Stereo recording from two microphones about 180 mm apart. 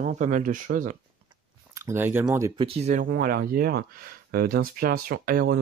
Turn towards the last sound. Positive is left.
turn(degrees=-55)  # may be behind; listen again after turning